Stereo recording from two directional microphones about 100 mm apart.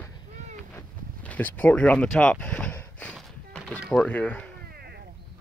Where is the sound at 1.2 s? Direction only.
15° left (ahead or behind).